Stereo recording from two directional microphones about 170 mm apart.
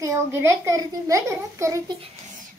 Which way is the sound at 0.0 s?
15° right (ahead or behind).